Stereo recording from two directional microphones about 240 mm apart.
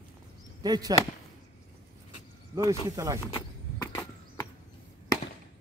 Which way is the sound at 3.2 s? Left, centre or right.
Centre.